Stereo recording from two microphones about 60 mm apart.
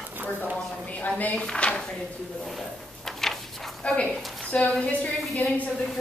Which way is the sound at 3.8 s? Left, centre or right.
Centre.